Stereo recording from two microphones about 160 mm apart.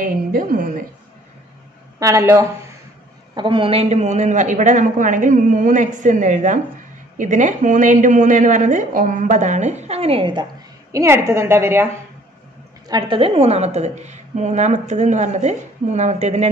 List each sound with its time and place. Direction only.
0.0 s a woman's voice: 60° right (ahead or behind)
2.0 s a woman's voice: 20° right (ahead or behind)
3.3 s a woman's voice: 30° right (ahead or behind)
10.9 s a woman's voice: 20° right (ahead or behind)
12.8 s a woman's voice: 30° right (ahead or behind); by 16.4 s 45° right (ahead or behind)